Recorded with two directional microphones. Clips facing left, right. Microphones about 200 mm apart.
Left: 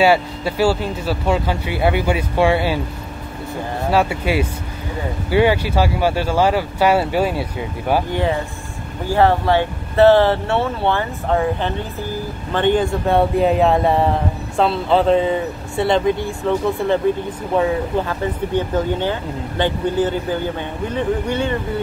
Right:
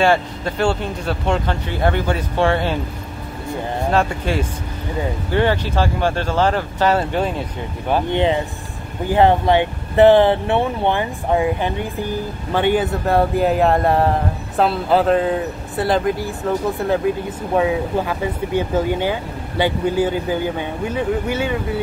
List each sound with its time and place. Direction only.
0.0 s speech: 5° left (ahead or behind)
3.9 s speech: 10° left (ahead or behind)
8.1 s speech: 20° right (ahead or behind)